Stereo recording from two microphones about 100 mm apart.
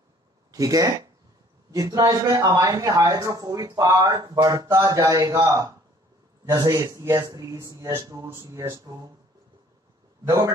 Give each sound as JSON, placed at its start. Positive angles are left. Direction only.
{"t": 0.5, "sound": "speech", "side_deg": -35}
{"t": 10.2, "sound": "speech", "side_deg": -35}